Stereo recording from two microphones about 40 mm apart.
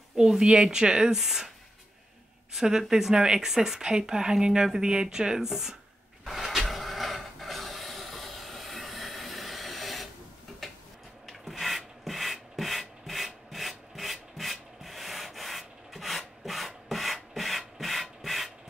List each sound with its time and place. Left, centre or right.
0.1 s speech: centre
2.5 s speech: centre
6.2 s printer: centre
10.6 s tick-tock: centre
11.2 s rub: centre